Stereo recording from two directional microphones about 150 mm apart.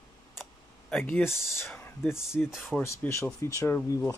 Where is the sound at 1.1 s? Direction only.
15° left (ahead or behind).